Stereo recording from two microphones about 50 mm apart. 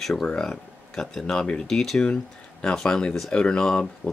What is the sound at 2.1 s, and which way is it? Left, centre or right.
Speech, left.